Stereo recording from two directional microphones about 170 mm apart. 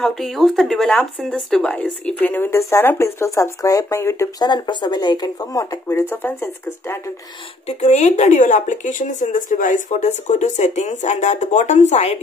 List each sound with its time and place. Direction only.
0.0 s speech: centre (ahead or behind)
7.6 s speech: 40° left (ahead or behind)